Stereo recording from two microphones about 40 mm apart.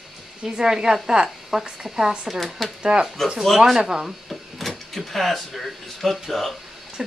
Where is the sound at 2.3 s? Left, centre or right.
Centre.